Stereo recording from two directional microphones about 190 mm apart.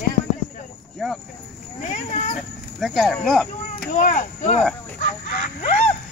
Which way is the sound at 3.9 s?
40° left (ahead or behind).